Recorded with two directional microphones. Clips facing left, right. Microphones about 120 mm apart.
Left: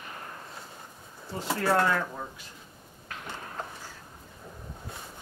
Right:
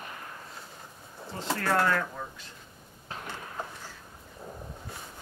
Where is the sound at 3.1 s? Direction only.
30° right (ahead or behind).